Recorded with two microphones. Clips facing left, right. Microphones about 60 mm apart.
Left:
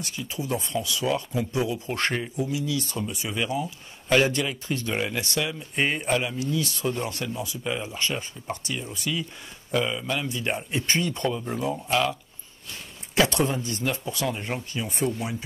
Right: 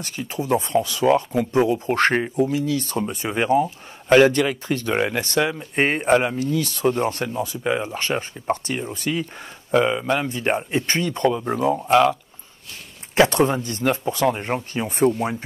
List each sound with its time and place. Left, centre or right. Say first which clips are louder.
0.0 s speech: right 4 dB; right